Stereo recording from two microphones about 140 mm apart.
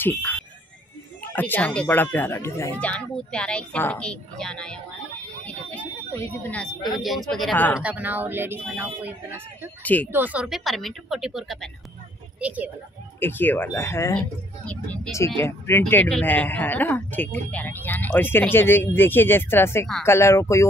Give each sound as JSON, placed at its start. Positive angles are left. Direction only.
{"t": 0.0, "sound": "speech", "side_deg": 15}
{"t": 7.8, "sound": "a woman's voice", "side_deg": -10}
{"t": 13.2, "sound": "speech", "side_deg": 15}
{"t": 15.4, "sound": "speech", "side_deg": 15}